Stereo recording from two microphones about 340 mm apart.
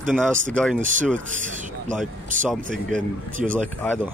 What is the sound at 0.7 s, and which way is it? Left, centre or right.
Speech, right.